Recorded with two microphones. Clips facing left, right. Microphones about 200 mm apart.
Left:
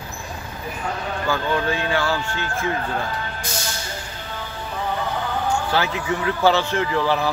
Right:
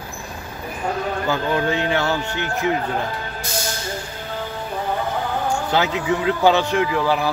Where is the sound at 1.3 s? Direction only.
20° right (ahead or behind).